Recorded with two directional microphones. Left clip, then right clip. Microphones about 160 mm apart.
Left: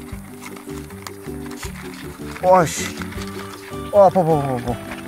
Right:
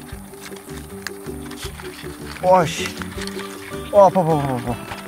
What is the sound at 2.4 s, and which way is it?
Speech, 30° left (ahead or behind).